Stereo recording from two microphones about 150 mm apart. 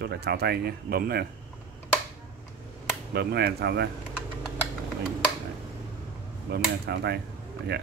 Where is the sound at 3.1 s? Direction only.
90° right.